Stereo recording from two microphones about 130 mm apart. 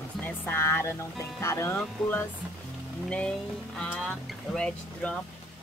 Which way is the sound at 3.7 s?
5° left (ahead or behind).